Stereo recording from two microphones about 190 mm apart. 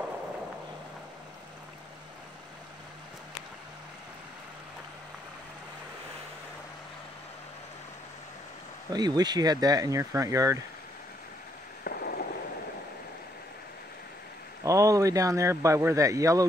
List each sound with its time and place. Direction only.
8.9 s speech: 20° right (ahead or behind)
11.8 s a sound: 55° left (ahead or behind)
14.6 s speech: 15° right (ahead or behind)